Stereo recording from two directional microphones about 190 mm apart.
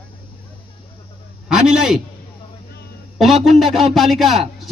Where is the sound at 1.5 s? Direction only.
5° right (ahead or behind).